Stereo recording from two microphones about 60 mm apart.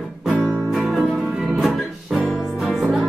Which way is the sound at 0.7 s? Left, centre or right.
Centre.